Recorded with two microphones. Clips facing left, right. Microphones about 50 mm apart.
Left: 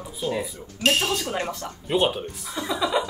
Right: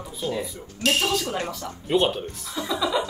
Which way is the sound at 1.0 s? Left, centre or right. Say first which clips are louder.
Right 1 dB; centre.